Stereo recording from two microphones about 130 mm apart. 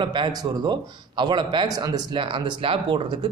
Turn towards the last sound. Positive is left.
turn(degrees=-40)  # may be behind; listen again after turning